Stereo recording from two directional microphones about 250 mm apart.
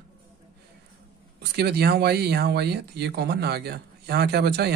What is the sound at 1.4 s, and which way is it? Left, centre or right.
Speech, right.